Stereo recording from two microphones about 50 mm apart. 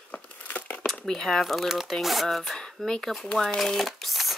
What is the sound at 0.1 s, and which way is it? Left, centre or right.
Crumpling, left.